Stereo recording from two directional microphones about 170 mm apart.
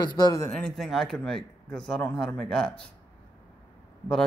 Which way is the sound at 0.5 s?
5° left (ahead or behind).